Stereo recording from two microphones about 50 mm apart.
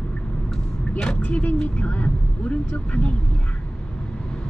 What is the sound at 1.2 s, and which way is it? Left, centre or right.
Speech, left.